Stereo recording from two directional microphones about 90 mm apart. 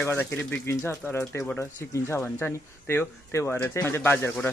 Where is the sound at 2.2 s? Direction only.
15° left (ahead or behind).